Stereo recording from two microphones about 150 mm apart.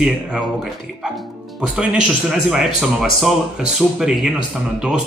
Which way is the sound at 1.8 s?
5° right (ahead or behind).